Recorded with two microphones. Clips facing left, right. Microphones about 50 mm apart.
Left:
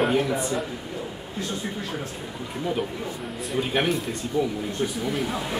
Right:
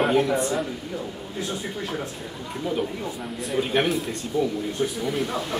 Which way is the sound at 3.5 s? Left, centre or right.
Centre.